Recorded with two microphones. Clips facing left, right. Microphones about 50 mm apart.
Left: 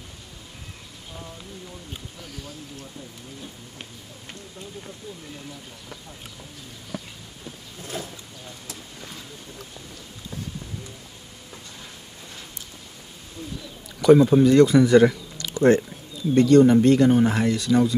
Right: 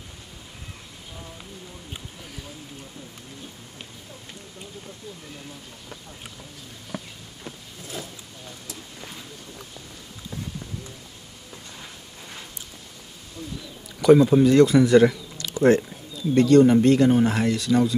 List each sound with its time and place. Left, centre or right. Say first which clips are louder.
7.9 s boat: left 2 dB; left
14.0 s speech: even; centre
15.5 s a sound: even; centre
16.3 s speech: even; centre